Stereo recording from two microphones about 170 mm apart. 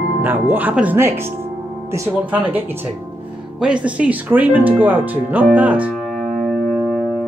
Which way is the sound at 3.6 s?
5° right (ahead or behind).